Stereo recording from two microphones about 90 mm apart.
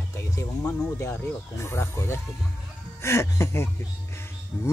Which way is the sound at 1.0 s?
30° left (ahead or behind).